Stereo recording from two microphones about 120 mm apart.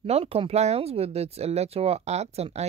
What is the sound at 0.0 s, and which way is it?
Speech, 55° right (ahead or behind).